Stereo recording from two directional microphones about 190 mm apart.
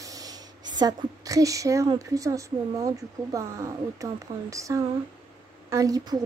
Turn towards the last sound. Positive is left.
turn(degrees=-20)  # may be behind; listen again after turning